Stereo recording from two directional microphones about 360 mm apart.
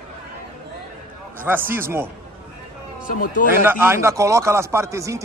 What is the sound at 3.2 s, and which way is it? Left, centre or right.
Speech, left.